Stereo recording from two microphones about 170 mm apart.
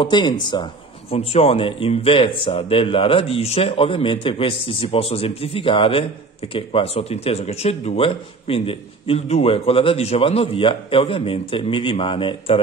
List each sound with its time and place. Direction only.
0.0 s speech: 25° left (ahead or behind)
1.1 s speech: 35° left (ahead or behind)